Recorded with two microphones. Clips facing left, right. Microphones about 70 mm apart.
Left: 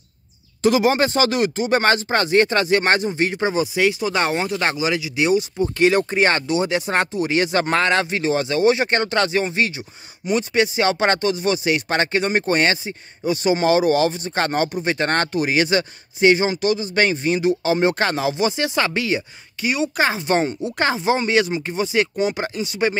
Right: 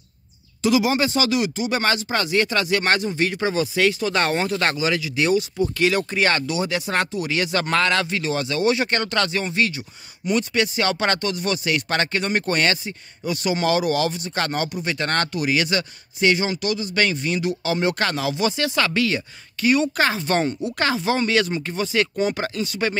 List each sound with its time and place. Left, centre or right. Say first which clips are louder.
0.6 s speech: left 3 dB; left; by 5.4 s centre
5.6 s speech: left 3 dB; left